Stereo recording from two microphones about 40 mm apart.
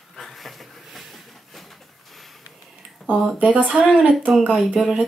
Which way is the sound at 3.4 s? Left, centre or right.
Right.